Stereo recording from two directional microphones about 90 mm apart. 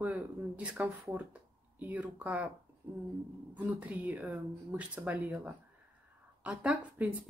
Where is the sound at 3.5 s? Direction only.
15° right (ahead or behind).